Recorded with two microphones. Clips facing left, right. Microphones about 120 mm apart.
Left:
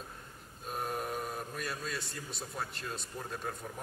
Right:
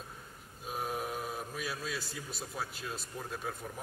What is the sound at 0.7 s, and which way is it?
A man's voice, 5° right (ahead or behind).